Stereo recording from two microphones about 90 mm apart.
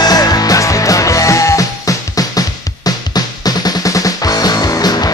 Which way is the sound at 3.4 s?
40° left (ahead or behind).